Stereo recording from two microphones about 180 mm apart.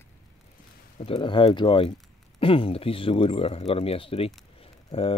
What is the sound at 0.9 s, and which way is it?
Speech, 30° left (ahead or behind).